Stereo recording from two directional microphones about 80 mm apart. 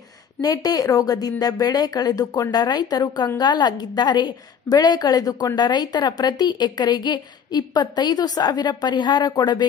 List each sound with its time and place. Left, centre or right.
0.4 s a woman's voice: left